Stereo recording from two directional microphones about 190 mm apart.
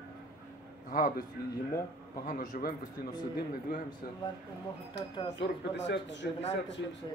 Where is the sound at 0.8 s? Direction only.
50° left (ahead or behind).